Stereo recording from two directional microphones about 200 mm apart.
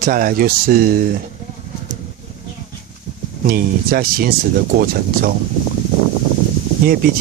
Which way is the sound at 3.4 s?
45° right (ahead or behind).